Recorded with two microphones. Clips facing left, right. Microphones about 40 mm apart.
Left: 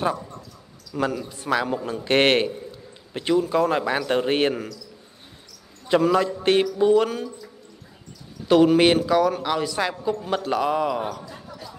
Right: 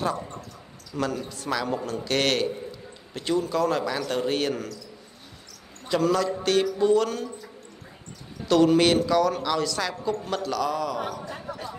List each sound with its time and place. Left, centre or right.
0.9 s speech: centre
1.3 s speech: left
5.9 s speech: left
8.5 s speech: centre